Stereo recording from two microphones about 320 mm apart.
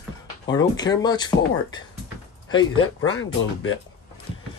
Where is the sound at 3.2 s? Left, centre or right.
Left.